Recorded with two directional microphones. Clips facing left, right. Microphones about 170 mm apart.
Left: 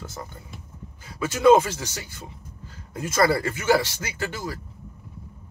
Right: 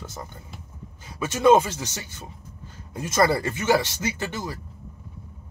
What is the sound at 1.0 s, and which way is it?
Speech, 20° right (ahead or behind).